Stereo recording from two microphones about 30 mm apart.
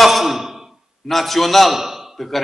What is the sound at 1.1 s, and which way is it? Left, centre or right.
Speech, centre.